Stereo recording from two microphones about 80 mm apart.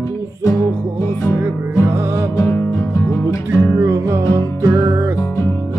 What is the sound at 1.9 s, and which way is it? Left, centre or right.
Music, right.